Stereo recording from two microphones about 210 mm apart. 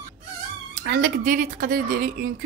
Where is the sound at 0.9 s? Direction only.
45° right (ahead or behind).